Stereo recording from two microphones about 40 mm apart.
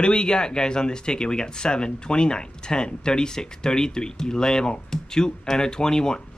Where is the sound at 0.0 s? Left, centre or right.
Left.